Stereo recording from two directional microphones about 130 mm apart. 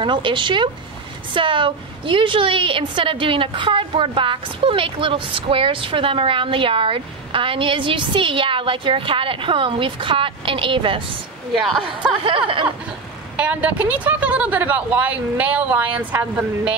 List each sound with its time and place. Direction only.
0.0 s a woman's voice: 40° right (ahead or behind)
11.5 s a woman's voice: centre (ahead or behind)
12.3 s a woman's voice: 40° right (ahead or behind)
13.4 s speech: 10° right (ahead or behind)